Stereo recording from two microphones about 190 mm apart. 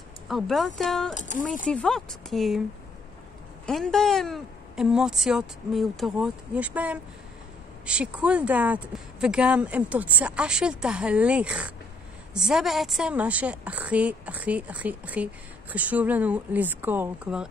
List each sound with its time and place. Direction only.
0.3 s speech: centre (ahead or behind)
1.1 s speech: 40° left (ahead or behind)
1.7 s speech: 5° left (ahead or behind)
3.6 s a woman's voice: 5° left (ahead or behind)